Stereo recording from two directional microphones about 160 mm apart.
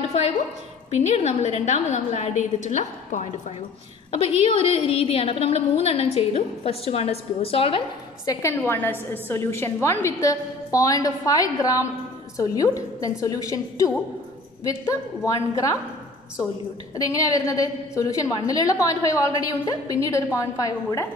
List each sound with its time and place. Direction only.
0.9 s a woman's voice: 40° left (ahead or behind)
4.4 s a woman's voice: 35° left (ahead or behind)
8.3 s a woman's voice: 20° left (ahead or behind)
16.9 s a woman's voice: 20° left (ahead or behind)